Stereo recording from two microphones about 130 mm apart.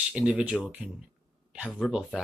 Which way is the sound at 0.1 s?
10° right (ahead or behind).